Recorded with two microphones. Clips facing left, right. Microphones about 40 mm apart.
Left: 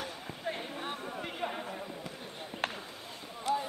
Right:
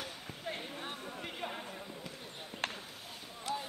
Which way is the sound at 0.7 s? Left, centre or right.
Centre.